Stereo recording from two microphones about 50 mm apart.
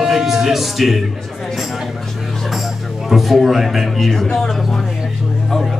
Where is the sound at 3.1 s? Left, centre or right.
Centre.